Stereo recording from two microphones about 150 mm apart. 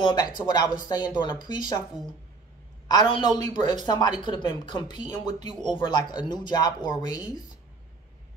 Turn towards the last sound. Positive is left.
turn(degrees=30)  # may be behind; listen again after turning